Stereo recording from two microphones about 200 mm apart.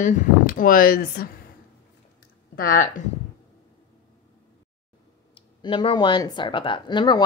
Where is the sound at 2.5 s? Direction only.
45° left (ahead or behind).